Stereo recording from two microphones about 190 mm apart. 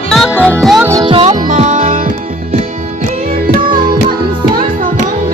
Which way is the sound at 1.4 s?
40° right (ahead or behind).